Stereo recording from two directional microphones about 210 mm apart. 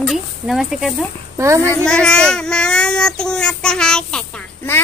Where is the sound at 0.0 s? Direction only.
Centre (ahead or behind).